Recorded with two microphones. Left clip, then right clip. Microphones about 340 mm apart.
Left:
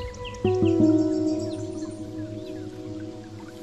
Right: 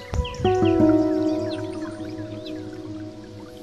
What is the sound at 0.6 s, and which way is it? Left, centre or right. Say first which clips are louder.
Music: right 2 dB; right.